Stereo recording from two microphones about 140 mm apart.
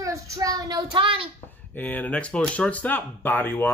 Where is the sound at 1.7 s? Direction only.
10° left (ahead or behind).